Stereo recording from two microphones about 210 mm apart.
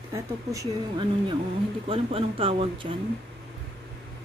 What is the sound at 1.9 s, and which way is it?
Speech, 25° right (ahead or behind).